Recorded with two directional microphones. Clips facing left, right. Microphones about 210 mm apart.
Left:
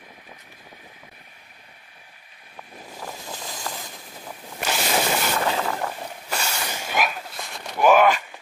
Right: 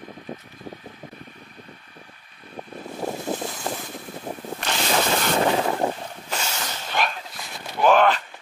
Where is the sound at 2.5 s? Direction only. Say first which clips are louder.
Right 7 dB; 45° right (ahead or behind).